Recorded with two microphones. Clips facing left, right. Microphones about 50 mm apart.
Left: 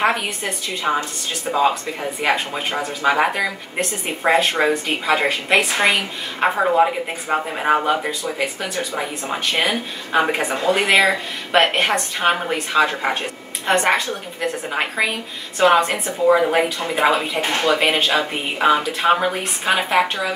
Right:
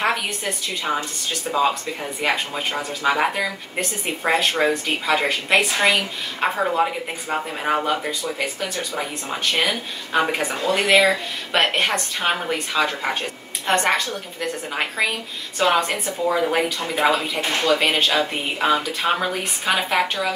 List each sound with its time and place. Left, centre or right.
0.0 s a woman's voice: centre
2.2 s a woman's voice: centre
17.4 s speech: left
17.7 s a woman's voice: centre